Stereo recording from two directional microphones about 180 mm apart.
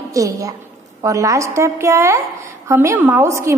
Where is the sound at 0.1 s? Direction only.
20° right (ahead or behind).